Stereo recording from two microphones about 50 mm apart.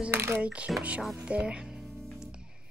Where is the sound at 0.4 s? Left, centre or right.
Right.